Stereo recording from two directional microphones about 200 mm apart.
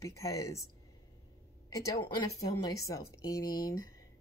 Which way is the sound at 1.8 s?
15° left (ahead or behind).